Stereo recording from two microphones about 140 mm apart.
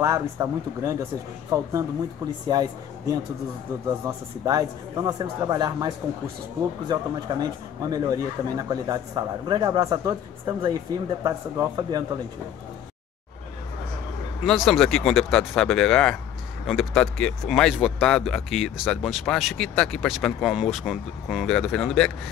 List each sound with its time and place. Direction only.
0.0 s speech: 20° right (ahead or behind)
4.5 s speech: 25° right (ahead or behind)
14.4 s speech: centre (ahead or behind)